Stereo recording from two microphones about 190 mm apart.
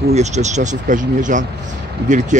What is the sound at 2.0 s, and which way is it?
Speech, 60° right (ahead or behind).